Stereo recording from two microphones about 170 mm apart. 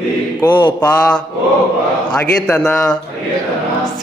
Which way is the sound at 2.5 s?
5° left (ahead or behind).